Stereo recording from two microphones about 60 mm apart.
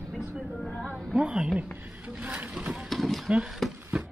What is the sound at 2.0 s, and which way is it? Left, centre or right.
Speech, right.